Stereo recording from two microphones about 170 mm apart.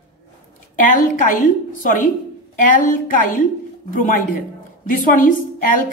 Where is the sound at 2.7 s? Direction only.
50° left (ahead or behind).